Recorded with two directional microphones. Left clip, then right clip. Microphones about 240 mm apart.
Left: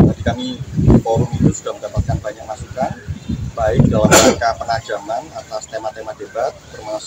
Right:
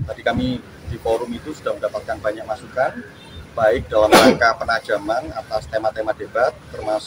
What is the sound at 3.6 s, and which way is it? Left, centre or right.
Speech, centre.